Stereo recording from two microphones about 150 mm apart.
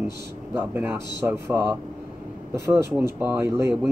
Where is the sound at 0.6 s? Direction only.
15° right (ahead or behind).